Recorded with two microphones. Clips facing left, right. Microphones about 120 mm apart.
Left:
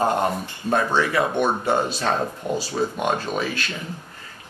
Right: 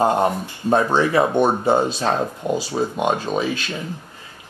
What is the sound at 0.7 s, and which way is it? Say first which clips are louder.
Speech: right 4 dB; 25° right (ahead or behind).